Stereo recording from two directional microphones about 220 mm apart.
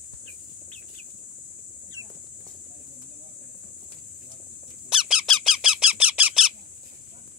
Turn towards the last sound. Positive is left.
turn(degrees=-5)  # may be behind; listen again after turning